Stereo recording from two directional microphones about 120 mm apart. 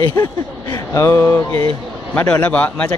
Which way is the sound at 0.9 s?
25° left (ahead or behind).